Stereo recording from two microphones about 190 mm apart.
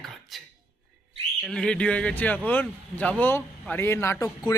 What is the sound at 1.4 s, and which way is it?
A man's voice, 5° left (ahead or behind).